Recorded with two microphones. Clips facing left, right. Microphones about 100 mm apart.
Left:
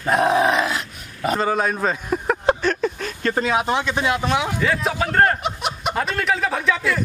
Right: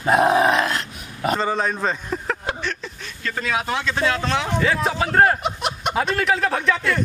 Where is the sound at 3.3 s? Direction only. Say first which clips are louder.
Left 3 dB; 20° left (ahead or behind).